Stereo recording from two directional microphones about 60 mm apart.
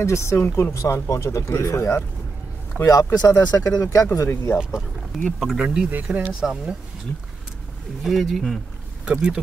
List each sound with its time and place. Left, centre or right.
0.0 s speech: left
2.9 s speech: left
4.3 s speech: left
5.4 s speech: centre
5.9 s speech: right
8.0 s speech: centre
9.0 s speech: centre